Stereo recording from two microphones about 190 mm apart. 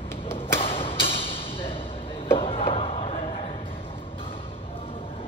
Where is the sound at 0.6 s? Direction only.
30° left (ahead or behind).